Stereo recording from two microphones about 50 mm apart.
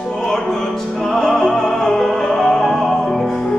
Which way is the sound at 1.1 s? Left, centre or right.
Centre.